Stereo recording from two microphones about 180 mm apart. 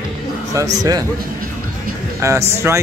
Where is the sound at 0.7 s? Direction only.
20° right (ahead or behind).